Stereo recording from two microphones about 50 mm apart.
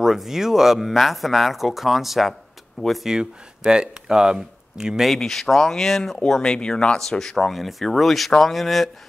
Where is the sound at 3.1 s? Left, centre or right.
Centre.